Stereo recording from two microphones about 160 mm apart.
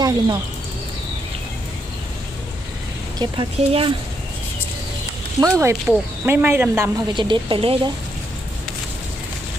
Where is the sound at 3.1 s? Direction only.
35° right (ahead or behind).